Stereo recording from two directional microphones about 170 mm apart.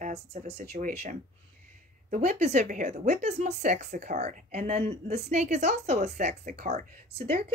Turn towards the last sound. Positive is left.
turn(degrees=-50)  # may be behind; listen again after turning